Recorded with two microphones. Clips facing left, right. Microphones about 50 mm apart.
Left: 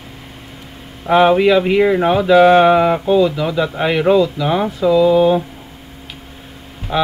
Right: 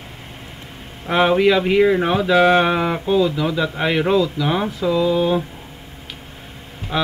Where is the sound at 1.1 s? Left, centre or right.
Centre.